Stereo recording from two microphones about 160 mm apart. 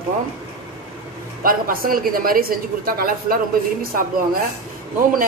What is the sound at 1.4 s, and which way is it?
A woman's voice, 65° right (ahead or behind).